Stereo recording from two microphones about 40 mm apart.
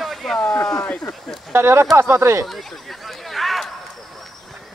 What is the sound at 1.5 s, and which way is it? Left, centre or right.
Speech, right.